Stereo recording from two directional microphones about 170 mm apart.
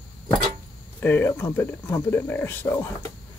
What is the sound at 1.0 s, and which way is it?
Speech, 10° left (ahead or behind).